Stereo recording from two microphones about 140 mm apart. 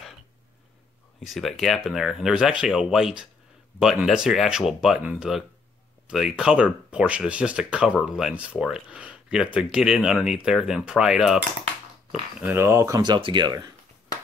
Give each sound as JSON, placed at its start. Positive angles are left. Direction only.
{"t": 1.2, "sound": "speech", "side_deg": 0}
{"t": 12.4, "sound": "speech", "side_deg": -15}